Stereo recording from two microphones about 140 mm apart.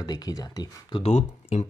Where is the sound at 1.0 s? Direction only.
55° left (ahead or behind).